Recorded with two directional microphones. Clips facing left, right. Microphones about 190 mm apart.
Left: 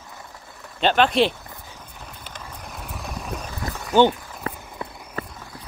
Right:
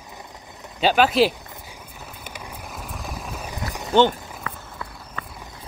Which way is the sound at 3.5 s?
20° right (ahead or behind).